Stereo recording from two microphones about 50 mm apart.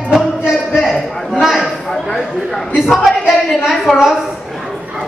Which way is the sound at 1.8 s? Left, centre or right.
Centre.